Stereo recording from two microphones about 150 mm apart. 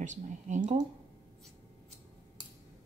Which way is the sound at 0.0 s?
55° right (ahead or behind).